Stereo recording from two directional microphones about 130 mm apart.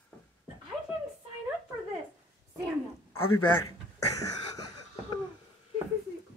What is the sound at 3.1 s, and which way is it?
Speech, 20° left (ahead or behind).